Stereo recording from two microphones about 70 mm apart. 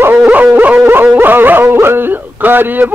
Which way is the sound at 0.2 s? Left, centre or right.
Right.